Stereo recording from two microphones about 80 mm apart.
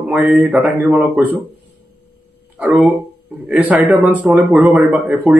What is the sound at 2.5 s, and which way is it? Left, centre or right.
Speech, centre.